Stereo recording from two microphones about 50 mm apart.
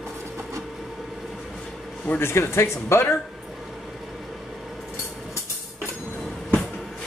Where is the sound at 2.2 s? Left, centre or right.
Left.